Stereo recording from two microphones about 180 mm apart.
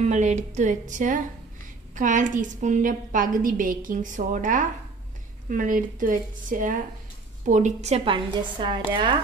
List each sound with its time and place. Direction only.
0.0 s a woman's voice: 40° right (ahead or behind)